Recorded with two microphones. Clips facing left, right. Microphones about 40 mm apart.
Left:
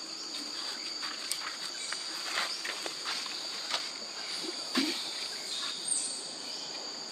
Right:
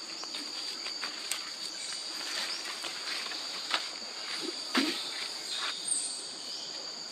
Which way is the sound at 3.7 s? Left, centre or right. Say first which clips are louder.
Right 4 dB; right.